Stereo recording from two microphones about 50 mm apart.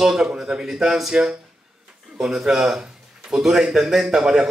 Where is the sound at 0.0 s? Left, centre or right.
Centre.